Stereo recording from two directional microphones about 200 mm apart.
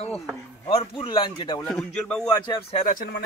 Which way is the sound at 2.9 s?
45° left (ahead or behind).